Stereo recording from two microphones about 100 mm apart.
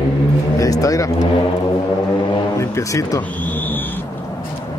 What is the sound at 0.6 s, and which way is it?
Speech, 35° left (ahead or behind).